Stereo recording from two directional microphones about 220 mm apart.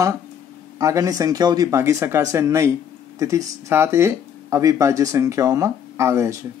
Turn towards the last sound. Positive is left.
turn(degrees=-10)  # may be behind; listen again after turning